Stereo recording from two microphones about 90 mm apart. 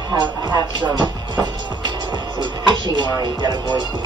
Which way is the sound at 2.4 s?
60° right (ahead or behind).